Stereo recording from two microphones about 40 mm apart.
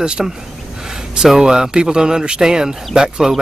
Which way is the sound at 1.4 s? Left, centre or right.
Centre.